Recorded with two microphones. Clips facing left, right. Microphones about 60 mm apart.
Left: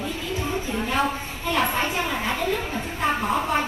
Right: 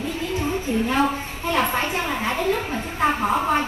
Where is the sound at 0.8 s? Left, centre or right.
Right.